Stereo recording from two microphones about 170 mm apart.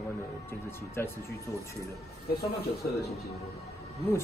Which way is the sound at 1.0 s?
10° left (ahead or behind).